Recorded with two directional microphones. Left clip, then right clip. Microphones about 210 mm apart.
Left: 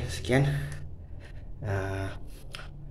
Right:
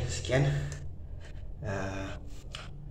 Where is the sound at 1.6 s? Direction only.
45° left (ahead or behind).